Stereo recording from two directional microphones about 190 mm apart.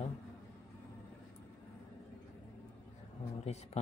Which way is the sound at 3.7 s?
35° left (ahead or behind).